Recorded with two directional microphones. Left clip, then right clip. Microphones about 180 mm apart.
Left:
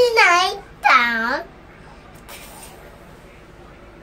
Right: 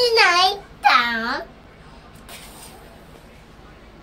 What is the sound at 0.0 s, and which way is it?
Babbling, 20° left (ahead or behind).